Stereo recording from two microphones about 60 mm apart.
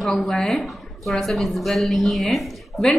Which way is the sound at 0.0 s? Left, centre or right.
Centre.